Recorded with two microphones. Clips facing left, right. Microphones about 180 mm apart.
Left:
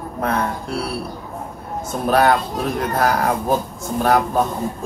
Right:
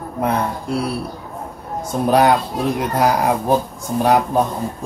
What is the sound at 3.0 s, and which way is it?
Speech, 15° right (ahead or behind).